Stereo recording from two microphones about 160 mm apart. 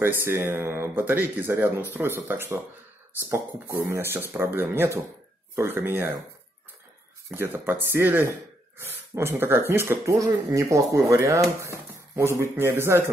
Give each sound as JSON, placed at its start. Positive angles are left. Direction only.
{"t": 0.0, "sound": "speech", "side_deg": -15}
{"t": 7.3, "sound": "speech", "side_deg": -15}